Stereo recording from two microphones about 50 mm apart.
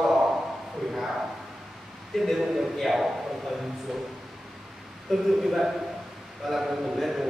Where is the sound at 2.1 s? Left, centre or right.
Centre.